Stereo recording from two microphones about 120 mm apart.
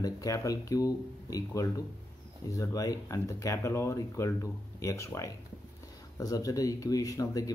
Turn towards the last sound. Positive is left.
turn(degrees=30)  # may be behind; listen again after turning